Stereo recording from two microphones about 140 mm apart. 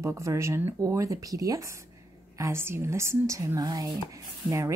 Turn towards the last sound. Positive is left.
turn(degrees=-25)  # may be behind; listen again after turning